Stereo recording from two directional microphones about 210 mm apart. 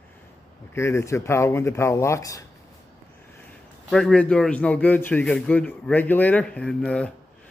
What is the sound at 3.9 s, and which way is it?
A man's voice, 5° left (ahead or behind).